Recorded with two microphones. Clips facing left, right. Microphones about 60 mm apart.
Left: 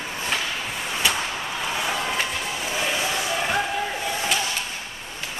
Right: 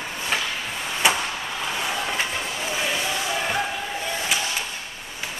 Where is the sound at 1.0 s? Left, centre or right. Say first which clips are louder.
Right 4 dB; right.